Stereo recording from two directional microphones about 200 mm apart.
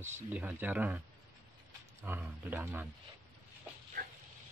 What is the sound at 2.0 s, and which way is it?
Speech, 10° right (ahead or behind).